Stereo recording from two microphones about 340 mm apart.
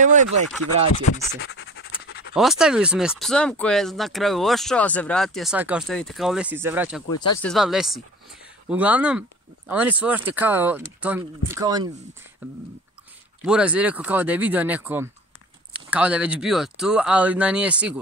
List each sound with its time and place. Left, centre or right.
0.0 s speech: right
1.3 s scratch: left
2.3 s speech: centre
13.4 s speech: centre